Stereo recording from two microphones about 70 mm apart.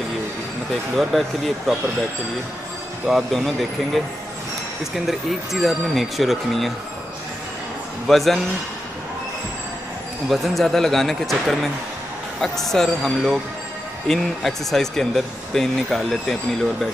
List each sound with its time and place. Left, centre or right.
1.1 s speech: centre
3.1 s speech: centre
8.1 s speech: centre
10.3 s speech: centre